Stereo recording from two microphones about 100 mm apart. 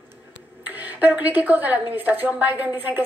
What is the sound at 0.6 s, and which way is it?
A woman's voice, 15° right (ahead or behind).